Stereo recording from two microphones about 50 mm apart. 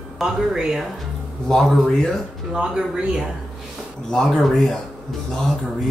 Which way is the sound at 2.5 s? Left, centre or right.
Centre.